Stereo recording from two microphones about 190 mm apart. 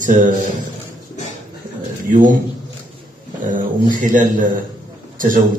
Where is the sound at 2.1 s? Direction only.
45° right (ahead or behind).